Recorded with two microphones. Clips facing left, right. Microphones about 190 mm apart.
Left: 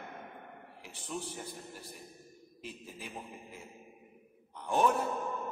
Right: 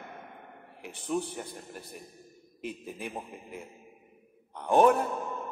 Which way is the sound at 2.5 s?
60° right (ahead or behind).